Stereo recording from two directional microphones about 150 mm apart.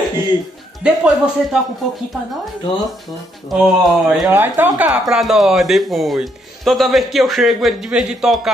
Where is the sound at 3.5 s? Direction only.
Centre (ahead or behind).